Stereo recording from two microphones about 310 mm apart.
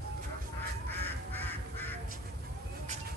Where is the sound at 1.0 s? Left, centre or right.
Centre.